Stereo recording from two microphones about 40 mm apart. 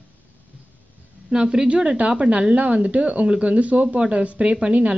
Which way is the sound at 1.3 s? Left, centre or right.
Centre.